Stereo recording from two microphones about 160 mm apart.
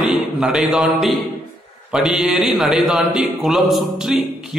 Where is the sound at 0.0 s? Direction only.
Centre (ahead or behind).